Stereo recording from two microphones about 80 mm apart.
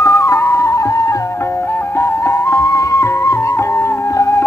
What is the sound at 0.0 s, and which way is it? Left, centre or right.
Flute, left.